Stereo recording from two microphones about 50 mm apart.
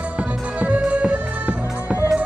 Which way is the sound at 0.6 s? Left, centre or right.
Right.